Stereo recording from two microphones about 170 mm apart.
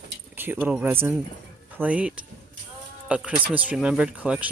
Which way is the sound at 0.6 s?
10° right (ahead or behind).